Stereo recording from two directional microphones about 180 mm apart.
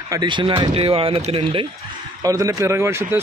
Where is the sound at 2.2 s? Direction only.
15° right (ahead or behind).